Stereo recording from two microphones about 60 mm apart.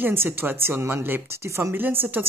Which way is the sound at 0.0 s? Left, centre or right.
Right.